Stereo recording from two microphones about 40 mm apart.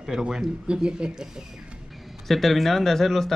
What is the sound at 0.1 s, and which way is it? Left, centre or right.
Speech, centre.